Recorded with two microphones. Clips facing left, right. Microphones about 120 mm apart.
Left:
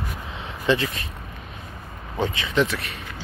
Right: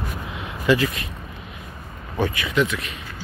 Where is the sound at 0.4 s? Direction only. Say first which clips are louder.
Right 3 dB; 30° left (ahead or behind).